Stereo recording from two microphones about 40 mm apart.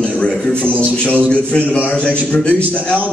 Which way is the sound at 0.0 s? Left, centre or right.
Left.